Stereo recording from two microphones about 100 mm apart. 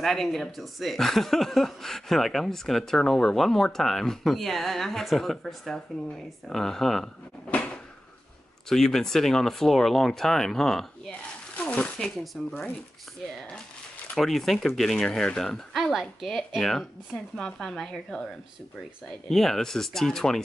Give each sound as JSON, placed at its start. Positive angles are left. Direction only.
{"t": 0.0, "sound": "speech", "side_deg": 5}
{"t": 7.5, "sound": "a sound", "side_deg": 10}
{"t": 8.6, "sound": "speech", "side_deg": 5}
{"t": 14.1, "sound": "speech", "side_deg": 0}